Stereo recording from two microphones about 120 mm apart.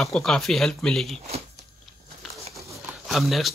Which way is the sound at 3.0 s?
Centre (ahead or behind).